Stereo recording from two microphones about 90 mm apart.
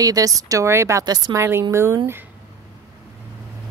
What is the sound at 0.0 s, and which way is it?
Speech, 40° right (ahead or behind).